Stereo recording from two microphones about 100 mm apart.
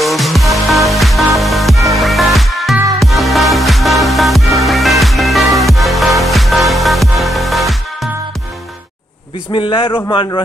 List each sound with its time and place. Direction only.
0.0 s music: centre (ahead or behind)
9.5 s a man's voice: 60° left (ahead or behind)